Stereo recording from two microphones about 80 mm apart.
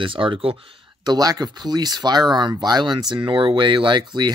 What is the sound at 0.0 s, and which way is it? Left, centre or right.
Speech, right.